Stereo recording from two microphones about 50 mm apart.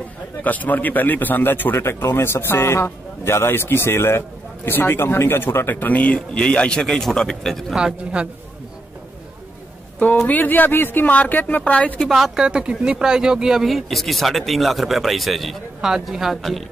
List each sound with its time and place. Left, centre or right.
0.4 s speech: left
5.8 s a man's voice: left; by 7.7 s centre
8.0 s a man's voice: right
10.2 s speech: left
12.0 s speech: centre
12.4 s speech: centre
16.3 s speech: centre